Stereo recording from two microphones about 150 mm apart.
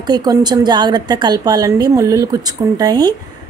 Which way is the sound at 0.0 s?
25° right (ahead or behind).